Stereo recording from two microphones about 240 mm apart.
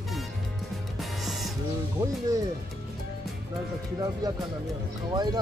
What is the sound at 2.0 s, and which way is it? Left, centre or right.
Speech, centre.